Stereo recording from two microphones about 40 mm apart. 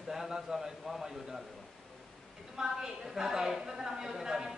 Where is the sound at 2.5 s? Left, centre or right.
Centre.